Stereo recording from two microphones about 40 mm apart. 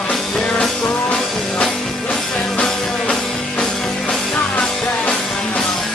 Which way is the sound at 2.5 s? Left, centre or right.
Left.